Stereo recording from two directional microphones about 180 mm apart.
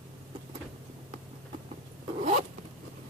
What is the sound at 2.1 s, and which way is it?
Zipper, 35° right (ahead or behind).